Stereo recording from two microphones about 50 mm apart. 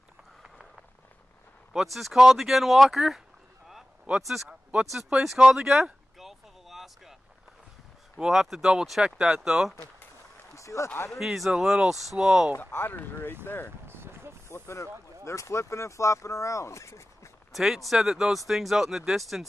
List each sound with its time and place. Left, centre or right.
1.9 s speech: centre
4.1 s speech: right
4.7 s speech: centre
6.1 s vehicle: centre
8.3 s speech: centre
10.5 s a sound: left
11.1 s speech: centre
12.5 s speech: left
13.8 s a sound: right
14.5 s speech: left
15.2 s speech: left
17.5 s speech: centre